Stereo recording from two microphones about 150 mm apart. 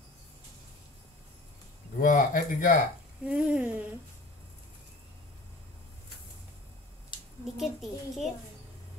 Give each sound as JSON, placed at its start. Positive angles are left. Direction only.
{"t": 2.0, "sound": "speech", "side_deg": 65}
{"t": 3.3, "sound": "speech", "side_deg": -5}
{"t": 7.4, "sound": "a child's voice", "side_deg": 0}